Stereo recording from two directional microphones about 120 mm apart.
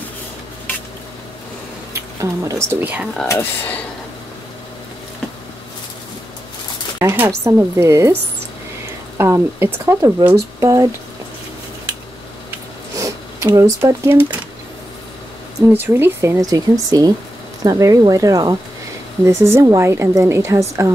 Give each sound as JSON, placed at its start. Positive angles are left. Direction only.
{"t": 2.0, "sound": "speech", "side_deg": -25}
{"t": 2.8, "sound": "speech", "side_deg": -15}
{"t": 3.3, "sound": "speech", "side_deg": 20}
{"t": 7.0, "sound": "a woman's voice", "side_deg": -25}
{"t": 9.2, "sound": "a woman's voice", "side_deg": -20}
{"t": 12.9, "sound": "zipper", "side_deg": -25}
{"t": 13.8, "sound": "a woman's voice", "side_deg": -20}
{"t": 15.6, "sound": "a woman's voice", "side_deg": -20}